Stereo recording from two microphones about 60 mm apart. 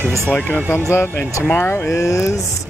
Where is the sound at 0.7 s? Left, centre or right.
Left.